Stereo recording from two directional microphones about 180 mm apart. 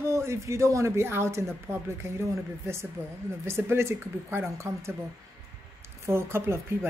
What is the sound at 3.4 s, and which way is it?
A woman's voice, 15° right (ahead or behind).